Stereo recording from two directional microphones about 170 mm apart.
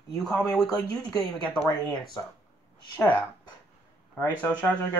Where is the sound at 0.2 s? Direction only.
5° left (ahead or behind).